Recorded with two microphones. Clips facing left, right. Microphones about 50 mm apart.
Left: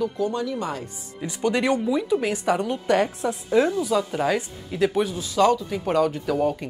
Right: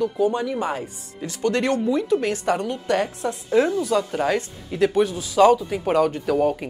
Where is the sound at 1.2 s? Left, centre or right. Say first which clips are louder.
Even; centre.